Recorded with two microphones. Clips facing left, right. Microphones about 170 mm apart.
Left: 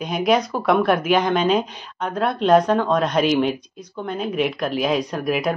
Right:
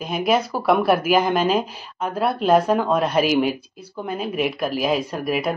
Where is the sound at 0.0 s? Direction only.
Centre (ahead or behind).